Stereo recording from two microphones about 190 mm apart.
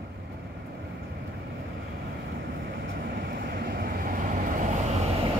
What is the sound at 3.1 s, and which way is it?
Vehicle, 55° right (ahead or behind).